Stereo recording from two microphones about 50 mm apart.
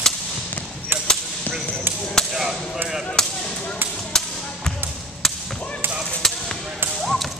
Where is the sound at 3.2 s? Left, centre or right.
Centre.